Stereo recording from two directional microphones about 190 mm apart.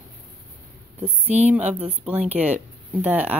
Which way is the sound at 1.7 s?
30° right (ahead or behind).